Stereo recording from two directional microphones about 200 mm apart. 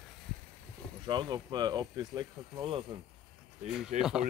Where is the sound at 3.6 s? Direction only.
Centre (ahead or behind).